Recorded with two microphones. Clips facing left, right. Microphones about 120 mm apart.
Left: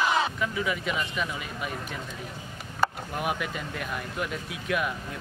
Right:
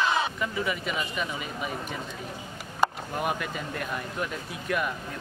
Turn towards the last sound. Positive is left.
turn(degrees=0)  # may be behind; listen again after turning